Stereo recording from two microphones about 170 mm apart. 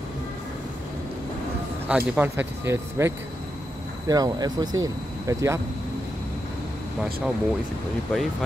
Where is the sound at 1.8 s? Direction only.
10° right (ahead or behind).